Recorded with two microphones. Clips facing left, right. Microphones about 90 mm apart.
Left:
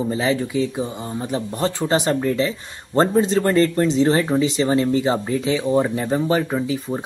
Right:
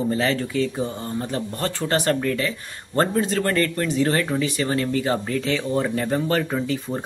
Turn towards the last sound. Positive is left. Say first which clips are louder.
# left 2 dB
turn(degrees=10)  # may be behind; listen again after turning